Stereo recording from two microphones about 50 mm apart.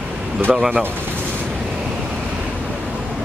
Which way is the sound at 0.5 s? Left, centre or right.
Centre.